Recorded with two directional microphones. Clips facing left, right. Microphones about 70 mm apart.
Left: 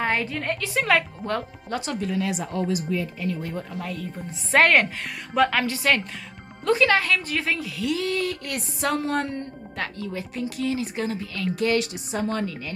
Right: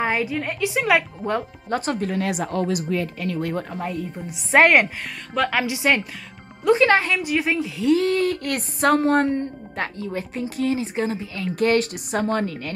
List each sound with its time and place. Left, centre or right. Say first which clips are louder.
0.0 s a woman's voice: right 2 dB; centre
1.7 s speech: right 4 dB; right
3.7 s a woman's voice: right 4 dB; right
7.2 s speech: right 5 dB; centre; by 9.3 s right
9.3 s speech: right 7 dB; right
11.5 s speech: right 4 dB; right